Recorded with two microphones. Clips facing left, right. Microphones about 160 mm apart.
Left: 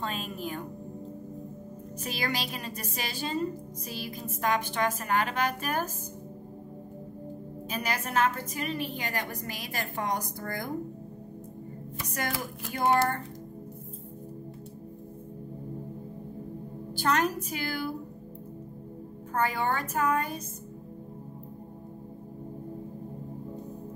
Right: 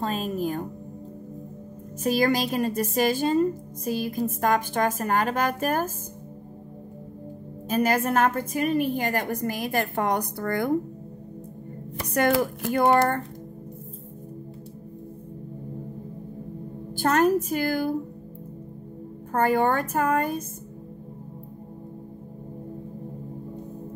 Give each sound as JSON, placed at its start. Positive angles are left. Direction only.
{"t": 0.0, "sound": "a woman's voice", "side_deg": -40}
{"t": 2.0, "sound": "a woman's voice", "side_deg": -45}
{"t": 7.7, "sound": "a woman's voice", "side_deg": -50}
{"t": 12.0, "sound": "speech", "side_deg": -65}
{"t": 16.9, "sound": "a woman's voice", "side_deg": -50}
{"t": 19.3, "sound": "a woman's voice", "side_deg": -50}